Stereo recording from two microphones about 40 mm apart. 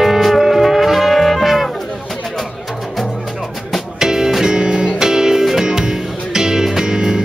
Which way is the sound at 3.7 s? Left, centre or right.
Centre.